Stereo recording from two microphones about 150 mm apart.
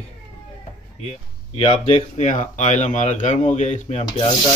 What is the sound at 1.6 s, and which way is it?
Speech, 35° left (ahead or behind).